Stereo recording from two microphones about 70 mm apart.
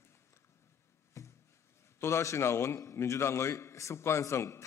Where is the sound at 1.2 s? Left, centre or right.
Left.